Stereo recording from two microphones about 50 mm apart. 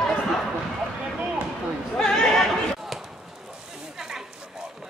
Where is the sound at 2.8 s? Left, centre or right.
Centre.